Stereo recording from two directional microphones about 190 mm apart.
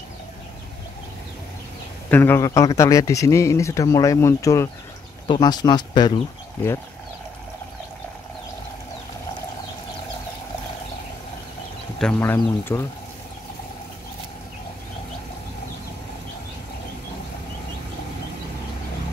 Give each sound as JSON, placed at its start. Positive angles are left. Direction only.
{"t": 2.0, "sound": "a man's voice", "side_deg": 10}
{"t": 12.0, "sound": "a man's voice", "side_deg": 10}